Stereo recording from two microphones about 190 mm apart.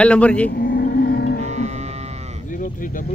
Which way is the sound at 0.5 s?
55° left (ahead or behind).